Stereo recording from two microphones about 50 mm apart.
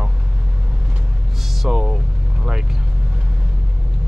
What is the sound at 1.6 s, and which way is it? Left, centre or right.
Speech, centre.